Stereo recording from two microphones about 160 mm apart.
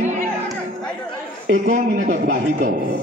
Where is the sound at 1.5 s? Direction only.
50° right (ahead or behind).